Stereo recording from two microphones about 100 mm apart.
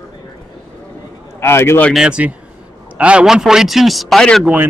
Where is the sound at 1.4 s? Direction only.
25° left (ahead or behind).